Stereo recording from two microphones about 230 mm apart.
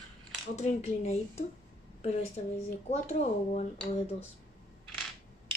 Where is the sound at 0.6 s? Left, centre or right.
Left.